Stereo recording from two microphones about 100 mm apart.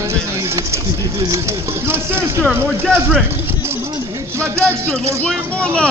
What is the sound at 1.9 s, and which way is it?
Speech, 25° right (ahead or behind).